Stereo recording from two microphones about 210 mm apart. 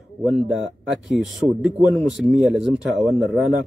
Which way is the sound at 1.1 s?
Centre (ahead or behind).